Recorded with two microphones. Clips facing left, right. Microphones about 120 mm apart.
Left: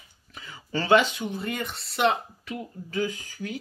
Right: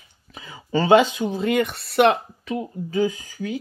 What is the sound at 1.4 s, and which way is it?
Speech, 75° right (ahead or behind).